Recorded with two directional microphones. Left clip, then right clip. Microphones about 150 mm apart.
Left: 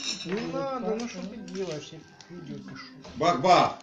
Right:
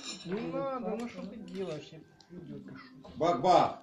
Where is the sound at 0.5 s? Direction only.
10° left (ahead or behind).